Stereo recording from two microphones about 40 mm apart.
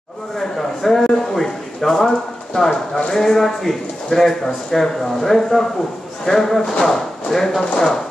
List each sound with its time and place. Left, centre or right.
0.4 s a man's voice: centre
7.6 s speech: left